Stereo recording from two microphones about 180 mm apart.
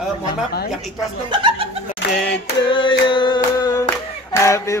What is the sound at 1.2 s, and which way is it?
Speech, 25° right (ahead or behind).